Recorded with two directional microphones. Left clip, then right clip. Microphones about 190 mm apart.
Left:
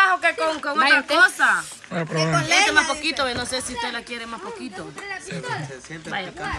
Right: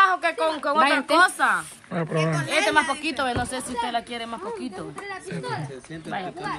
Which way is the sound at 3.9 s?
25° right (ahead or behind).